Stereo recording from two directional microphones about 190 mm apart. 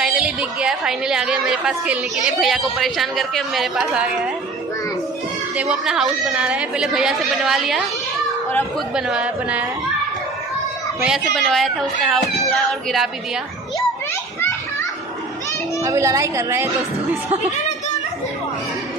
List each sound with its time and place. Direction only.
0.0 s a woman's voice: 5° right (ahead or behind)
5.6 s speech: 5° right (ahead or behind)
8.9 s speech: 5° right (ahead or behind)
11.1 s speech: centre (ahead or behind)
15.8 s a woman's voice: 15° right (ahead or behind)